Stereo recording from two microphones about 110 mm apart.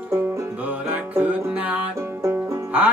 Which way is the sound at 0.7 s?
15° right (ahead or behind).